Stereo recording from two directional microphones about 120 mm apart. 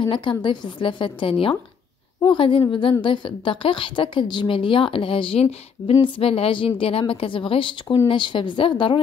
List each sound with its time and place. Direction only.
0.0 s a woman's voice: 40° left (ahead or behind)